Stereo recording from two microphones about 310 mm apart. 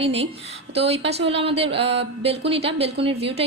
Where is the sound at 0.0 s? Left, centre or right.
Centre.